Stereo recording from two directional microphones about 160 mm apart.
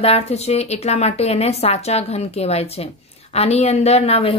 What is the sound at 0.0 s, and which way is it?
Speech, 40° left (ahead or behind).